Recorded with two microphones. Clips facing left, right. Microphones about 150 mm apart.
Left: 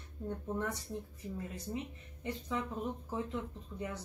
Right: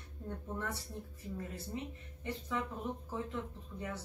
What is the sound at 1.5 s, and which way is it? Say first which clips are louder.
Speech: left 2 dB; 15° left (ahead or behind).